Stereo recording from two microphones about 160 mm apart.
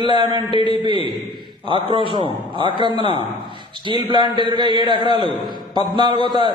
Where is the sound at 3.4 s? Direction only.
30° right (ahead or behind).